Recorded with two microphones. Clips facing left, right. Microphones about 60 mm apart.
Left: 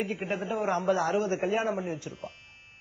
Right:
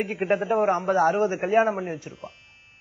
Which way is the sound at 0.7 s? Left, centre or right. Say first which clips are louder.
Right 3 dB; right.